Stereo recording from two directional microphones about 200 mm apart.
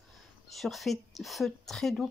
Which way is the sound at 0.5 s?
Centre (ahead or behind).